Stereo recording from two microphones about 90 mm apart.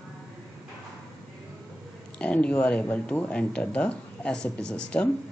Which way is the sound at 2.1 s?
15° left (ahead or behind).